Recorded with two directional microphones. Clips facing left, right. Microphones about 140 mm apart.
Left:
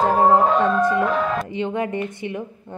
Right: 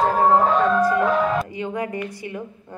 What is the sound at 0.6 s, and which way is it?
Music, centre (ahead or behind).